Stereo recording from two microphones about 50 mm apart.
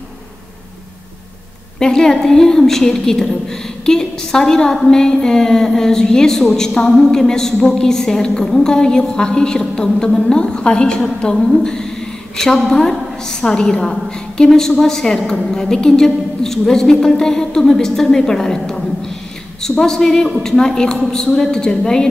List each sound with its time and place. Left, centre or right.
1.8 s a woman's voice: centre